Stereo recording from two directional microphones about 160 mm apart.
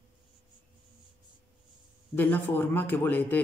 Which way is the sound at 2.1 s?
10° left (ahead or behind).